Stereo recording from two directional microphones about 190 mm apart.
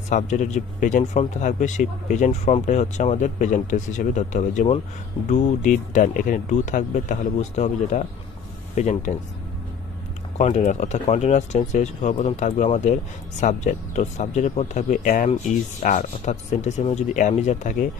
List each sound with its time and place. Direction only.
0.1 s speech: 40° left (ahead or behind)
10.3 s speech: 35° left (ahead or behind)